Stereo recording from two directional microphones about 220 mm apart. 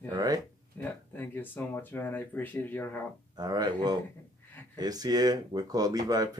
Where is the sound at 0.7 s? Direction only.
10° left (ahead or behind).